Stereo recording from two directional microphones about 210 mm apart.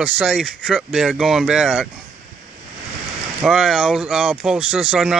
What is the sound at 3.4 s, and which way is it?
Speech, 5° right (ahead or behind).